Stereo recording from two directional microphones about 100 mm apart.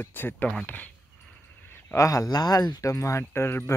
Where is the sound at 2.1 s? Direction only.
40° left (ahead or behind); by 3.7 s 25° left (ahead or behind).